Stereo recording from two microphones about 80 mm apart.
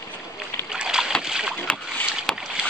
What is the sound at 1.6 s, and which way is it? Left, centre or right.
Rowboat, centre.